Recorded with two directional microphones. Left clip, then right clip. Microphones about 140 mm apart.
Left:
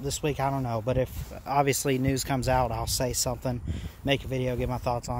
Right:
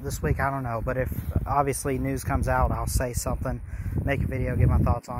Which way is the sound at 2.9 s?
30° left (ahead or behind).